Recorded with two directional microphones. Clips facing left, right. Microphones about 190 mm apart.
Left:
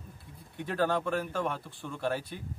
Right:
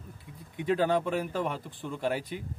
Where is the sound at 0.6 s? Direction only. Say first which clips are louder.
Right 3 dB; 15° right (ahead or behind).